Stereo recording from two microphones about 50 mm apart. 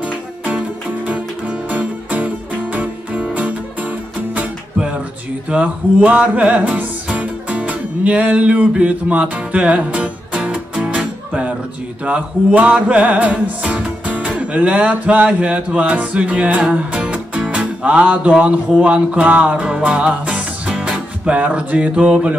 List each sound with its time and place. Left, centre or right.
1.0 s music: right
5.5 s music: right
18.3 s speech: centre
18.8 s music: right